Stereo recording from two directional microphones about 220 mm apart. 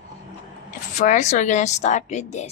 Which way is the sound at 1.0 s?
35° left (ahead or behind).